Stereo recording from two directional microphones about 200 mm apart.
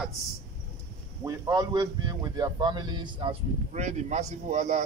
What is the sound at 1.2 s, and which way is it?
Speech, 15° right (ahead or behind).